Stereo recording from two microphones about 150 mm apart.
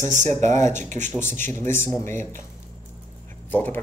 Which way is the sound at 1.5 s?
15° left (ahead or behind).